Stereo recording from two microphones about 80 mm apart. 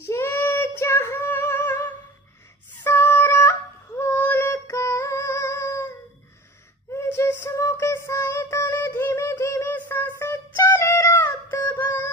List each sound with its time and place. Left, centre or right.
0.0 s female singing: left
2.8 s synthetic singing: left
6.9 s child singing: left
8.8 s a sound: left
11.8 s music: left